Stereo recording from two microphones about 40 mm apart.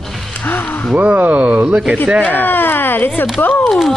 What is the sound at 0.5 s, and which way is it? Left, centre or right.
Gasp, left.